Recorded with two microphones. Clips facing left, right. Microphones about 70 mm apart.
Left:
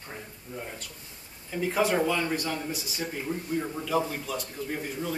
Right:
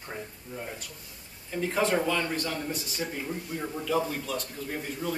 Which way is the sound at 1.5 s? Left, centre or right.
Centre.